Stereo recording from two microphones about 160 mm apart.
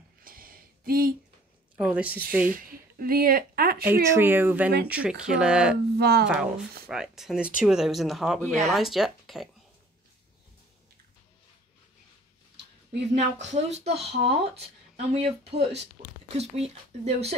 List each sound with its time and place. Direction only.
0.2 s a sound: 60° right (ahead or behind)
1.8 s a sound: 5° right (ahead or behind)
2.5 s speech: 65° right (ahead or behind)
4.1 s speech: 15° right (ahead or behind)
5.9 s speech: 85° right
6.2 s speech: 5° right (ahead or behind)
13.1 s speech: 45° right (ahead or behind)